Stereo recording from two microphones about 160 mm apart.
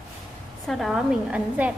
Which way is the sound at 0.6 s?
Centre (ahead or behind).